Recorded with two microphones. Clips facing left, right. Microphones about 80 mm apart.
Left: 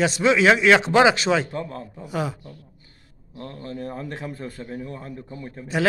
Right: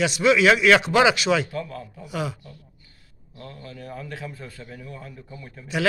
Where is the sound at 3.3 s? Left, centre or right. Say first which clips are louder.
Left 6 dB; left.